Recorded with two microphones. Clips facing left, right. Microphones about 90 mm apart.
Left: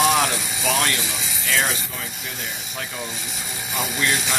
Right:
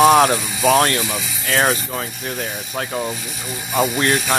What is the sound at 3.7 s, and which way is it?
Speech, 50° right (ahead or behind).